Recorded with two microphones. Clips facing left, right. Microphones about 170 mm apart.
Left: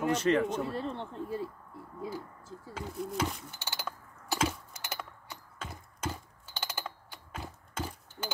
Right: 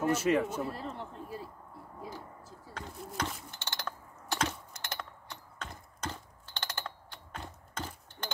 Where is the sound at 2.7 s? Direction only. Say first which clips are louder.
Left 5 dB; 5° left (ahead or behind).